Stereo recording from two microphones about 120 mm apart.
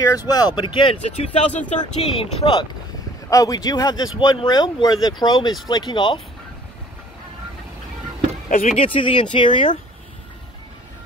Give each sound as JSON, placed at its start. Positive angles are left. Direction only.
{"t": 0.1, "sound": "speech", "side_deg": 30}
{"t": 1.0, "sound": "speech", "side_deg": 60}
{"t": 2.0, "sound": "speech", "side_deg": 55}
{"t": 3.3, "sound": "speech", "side_deg": 30}
{"t": 8.7, "sound": "speech", "side_deg": 45}